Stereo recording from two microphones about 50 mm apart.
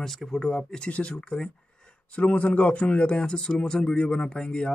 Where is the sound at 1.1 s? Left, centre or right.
Centre.